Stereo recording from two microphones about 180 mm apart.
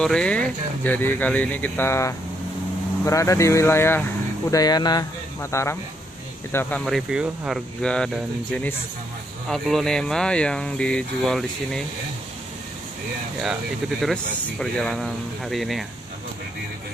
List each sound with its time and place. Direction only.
0.0 s speech: 5° left (ahead or behind)
14.0 s speech: 5° left (ahead or behind)